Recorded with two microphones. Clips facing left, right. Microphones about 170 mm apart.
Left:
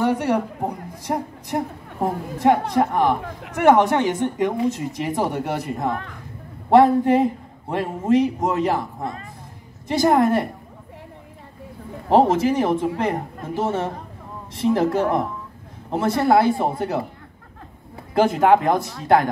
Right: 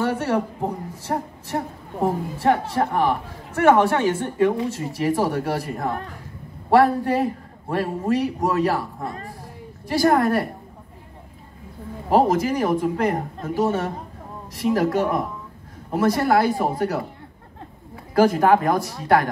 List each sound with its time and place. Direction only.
0.0 s a man's voice: 15° left (ahead or behind)
12.1 s a man's voice: 25° left (ahead or behind)
18.1 s a man's voice: 25° left (ahead or behind)